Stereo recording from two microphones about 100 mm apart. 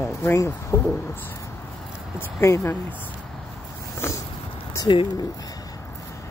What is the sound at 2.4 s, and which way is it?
Speech, 30° left (ahead or behind).